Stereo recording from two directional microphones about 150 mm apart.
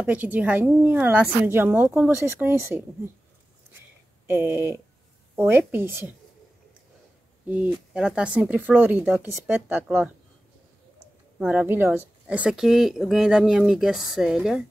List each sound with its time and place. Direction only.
0.0 s a woman's voice: 10° right (ahead or behind)
4.3 s a woman's voice: 15° right (ahead or behind)
7.4 s a woman's voice: 10° right (ahead or behind)
11.3 s a woman's voice: 10° right (ahead or behind)